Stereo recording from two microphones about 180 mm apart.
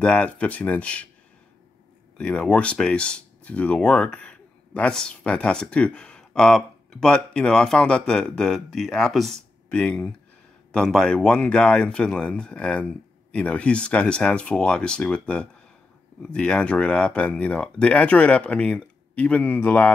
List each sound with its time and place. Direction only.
0.0 s speech: 5° left (ahead or behind)
2.1 s speech: 5° left (ahead or behind)